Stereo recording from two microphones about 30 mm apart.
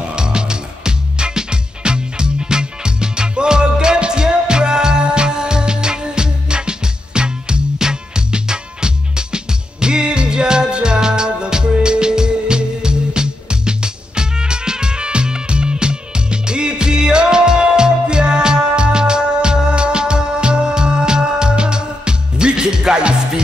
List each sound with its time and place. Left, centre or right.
0.1 s music: right